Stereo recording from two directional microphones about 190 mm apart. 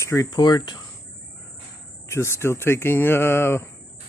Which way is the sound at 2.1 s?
15° left (ahead or behind).